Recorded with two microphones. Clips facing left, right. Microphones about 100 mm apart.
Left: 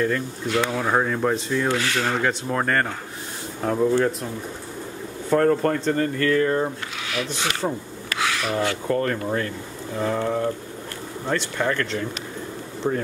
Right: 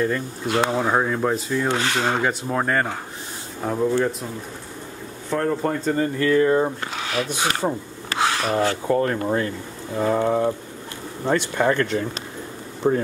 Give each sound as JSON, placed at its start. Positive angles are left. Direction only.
{"t": 0.5, "sound": "speech", "side_deg": -30}
{"t": 0.8, "sound": "speech", "side_deg": -5}
{"t": 1.7, "sound": "speech", "side_deg": -25}
{"t": 2.4, "sound": "speech", "side_deg": -5}
{"t": 5.3, "sound": "speech", "side_deg": 0}
{"t": 7.0, "sound": "a sound", "side_deg": -35}
{"t": 7.6, "sound": "speech", "side_deg": -10}
{"t": 8.1, "sound": "a sound", "side_deg": -35}
{"t": 8.8, "sound": "speech", "side_deg": -20}